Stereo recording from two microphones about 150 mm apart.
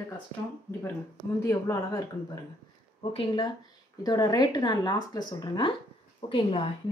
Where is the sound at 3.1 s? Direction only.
35° left (ahead or behind).